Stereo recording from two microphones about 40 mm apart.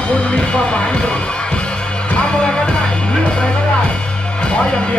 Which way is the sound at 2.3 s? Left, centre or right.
Left.